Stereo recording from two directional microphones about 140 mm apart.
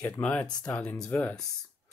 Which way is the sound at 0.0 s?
10° left (ahead or behind).